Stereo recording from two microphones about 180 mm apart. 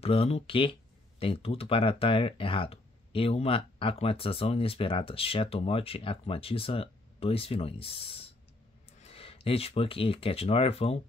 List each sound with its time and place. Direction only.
0.0 s speech: 35° left (ahead or behind)